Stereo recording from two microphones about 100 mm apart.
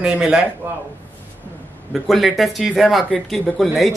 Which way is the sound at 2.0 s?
Centre (ahead or behind).